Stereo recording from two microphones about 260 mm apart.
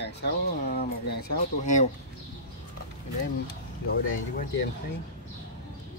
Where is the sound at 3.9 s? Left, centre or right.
Left.